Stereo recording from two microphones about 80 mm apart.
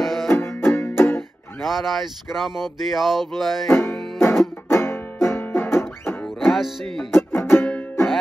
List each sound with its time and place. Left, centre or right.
0.0 s banjo: centre
0.3 s music: left
1.6 s a sound: centre
4.2 s music: left
6.2 s music: centre
7.1 s music: left